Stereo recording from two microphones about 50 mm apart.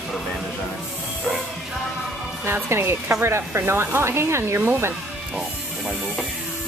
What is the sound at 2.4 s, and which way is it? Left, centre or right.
Speech, right.